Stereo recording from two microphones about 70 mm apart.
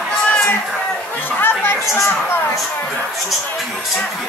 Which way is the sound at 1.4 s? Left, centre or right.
Left.